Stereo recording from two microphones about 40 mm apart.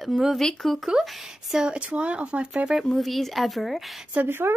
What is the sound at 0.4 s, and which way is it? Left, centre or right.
Speech, centre.